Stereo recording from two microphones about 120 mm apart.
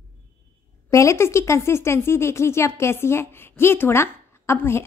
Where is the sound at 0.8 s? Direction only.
25° left (ahead or behind).